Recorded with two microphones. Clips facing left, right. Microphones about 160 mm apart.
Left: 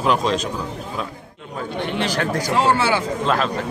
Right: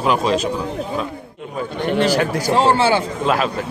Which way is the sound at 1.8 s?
45° right (ahead or behind).